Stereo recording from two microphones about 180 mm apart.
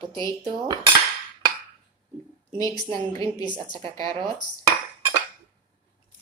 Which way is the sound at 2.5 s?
20° left (ahead or behind).